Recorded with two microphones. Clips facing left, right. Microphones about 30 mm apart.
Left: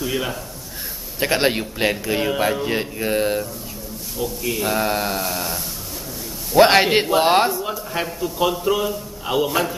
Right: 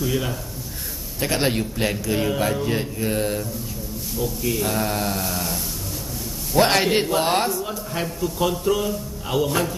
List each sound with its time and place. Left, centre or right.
0.0 s a man's voice: centre
4.2 s a man's voice: centre
6.5 s a man's voice: left